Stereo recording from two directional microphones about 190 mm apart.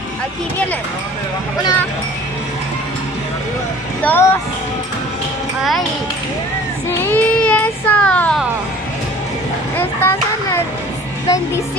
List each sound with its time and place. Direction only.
4.0 s speech: 10° left (ahead or behind)
5.6 s a child's voice: centre (ahead or behind)
6.9 s child singing: 10° left (ahead or behind)
9.8 s a sound: 10° left (ahead or behind)
11.2 s a woman's voice: 15° left (ahead or behind)